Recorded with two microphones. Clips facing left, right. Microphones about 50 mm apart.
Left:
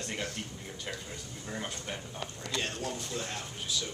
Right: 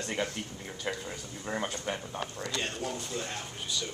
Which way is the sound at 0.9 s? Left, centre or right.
Right.